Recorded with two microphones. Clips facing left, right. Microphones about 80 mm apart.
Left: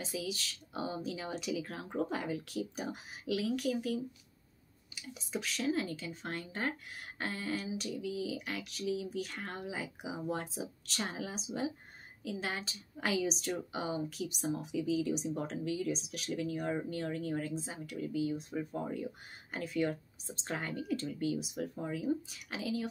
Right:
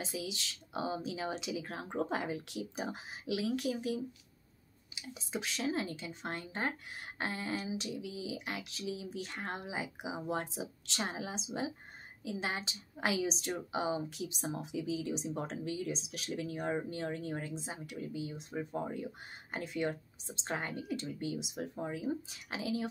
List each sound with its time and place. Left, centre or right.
0.2 s speech: right
5.2 s speech: right
14.4 s speech: right